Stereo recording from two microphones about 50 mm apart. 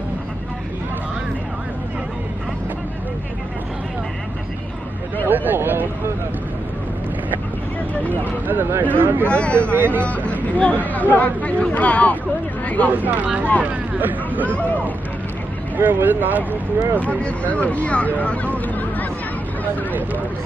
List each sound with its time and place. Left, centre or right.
5.3 s vehicle: right
8.0 s vehicle: left
8.5 s a sound: right
9.3 s speech: left
9.8 s speech: right
10.0 s speech: left
12.6 s a sound: left
12.9 s speech: right
15.8 s speech: right
17.0 s speech: left